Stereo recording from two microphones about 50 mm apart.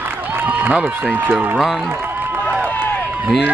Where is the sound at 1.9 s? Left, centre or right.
Right.